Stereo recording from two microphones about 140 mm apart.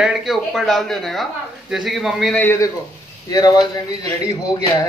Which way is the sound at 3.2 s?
30° left (ahead or behind).